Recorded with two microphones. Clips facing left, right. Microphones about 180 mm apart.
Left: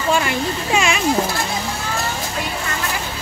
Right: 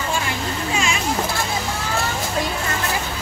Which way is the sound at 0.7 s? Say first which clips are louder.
Left 5 dB; 70° left (ahead or behind).